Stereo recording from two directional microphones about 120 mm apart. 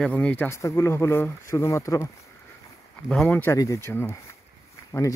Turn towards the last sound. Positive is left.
turn(degrees=25)  # may be behind; listen again after turning